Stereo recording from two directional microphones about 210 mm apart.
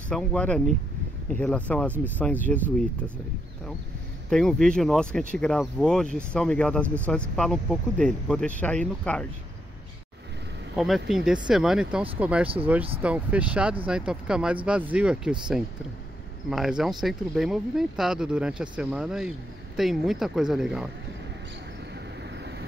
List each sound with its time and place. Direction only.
0.1 s speech: 5° left (ahead or behind)
4.3 s speech: centre (ahead or behind)
10.8 s speech: centre (ahead or behind)
16.4 s speech: centre (ahead or behind)
22.3 s vehicle: 55° right (ahead or behind)